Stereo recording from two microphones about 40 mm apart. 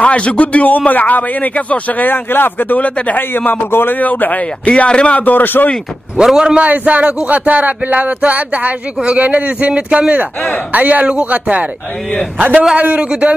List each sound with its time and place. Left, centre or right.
0.0 s a man's voice: left
4.0 s a man's voice: left
4.6 s speech: left
5.2 s a man's voice: left
6.2 s a man's voice: centre
6.6 s a man's voice: right